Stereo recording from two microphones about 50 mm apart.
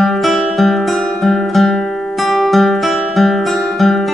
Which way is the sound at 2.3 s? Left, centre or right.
Centre.